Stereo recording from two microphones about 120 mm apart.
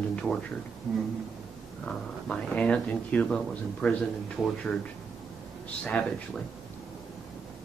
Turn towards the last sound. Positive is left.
turn(degrees=5)  # may be behind; listen again after turning